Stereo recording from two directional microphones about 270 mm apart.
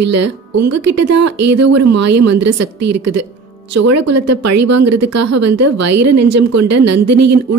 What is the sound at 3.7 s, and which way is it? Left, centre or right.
A woman's voice, right.